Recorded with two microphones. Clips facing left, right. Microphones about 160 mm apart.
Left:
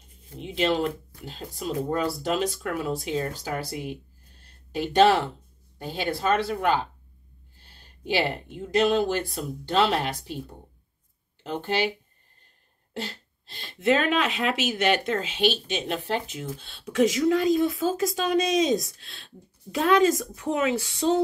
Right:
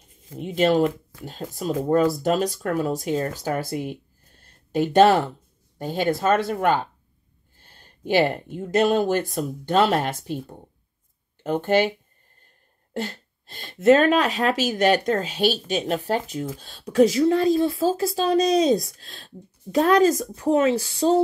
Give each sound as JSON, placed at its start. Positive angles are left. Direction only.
{"t": 0.4, "sound": "speech", "side_deg": -45}
{"t": 4.4, "sound": "a sound", "side_deg": -50}
{"t": 5.8, "sound": "speech", "side_deg": -45}
{"t": 11.4, "sound": "speech", "side_deg": -50}
{"t": 12.9, "sound": "speech", "side_deg": -50}